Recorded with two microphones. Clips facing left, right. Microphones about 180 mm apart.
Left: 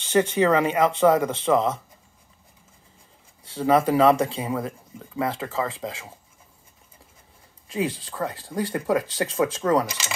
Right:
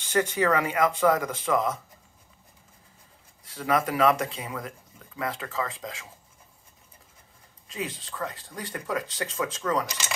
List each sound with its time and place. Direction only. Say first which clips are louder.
0.0 s speech: left 5 dB; 25° left (ahead or behind)
3.4 s speech: left 6 dB; 30° left (ahead or behind)
7.7 s speech: left 8 dB; 30° left (ahead or behind)